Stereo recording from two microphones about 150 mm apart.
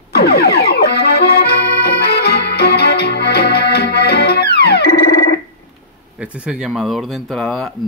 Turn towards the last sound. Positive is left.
turn(degrees=5)  # may be behind; listen again after turning